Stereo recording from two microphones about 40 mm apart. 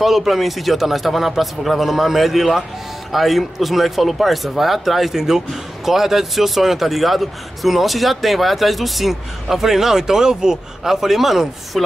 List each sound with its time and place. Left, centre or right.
0.0 s speech: centre